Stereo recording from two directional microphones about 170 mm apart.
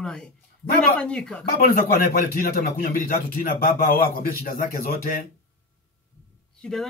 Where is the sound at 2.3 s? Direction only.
55° left (ahead or behind).